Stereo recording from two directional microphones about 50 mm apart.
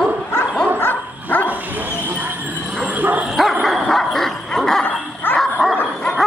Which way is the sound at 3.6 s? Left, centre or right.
Centre.